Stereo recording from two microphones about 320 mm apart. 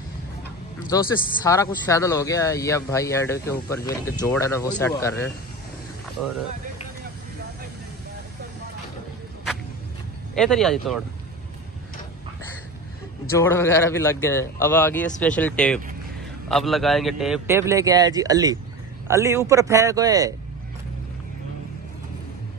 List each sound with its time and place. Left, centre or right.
0.8 s speech: centre
10.3 s speech: centre
13.3 s speech: centre